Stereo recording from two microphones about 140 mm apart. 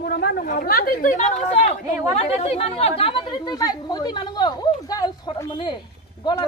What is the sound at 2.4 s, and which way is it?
Speech, 45° left (ahead or behind).